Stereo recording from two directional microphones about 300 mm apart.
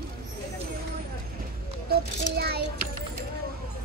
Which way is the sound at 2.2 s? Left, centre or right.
Right.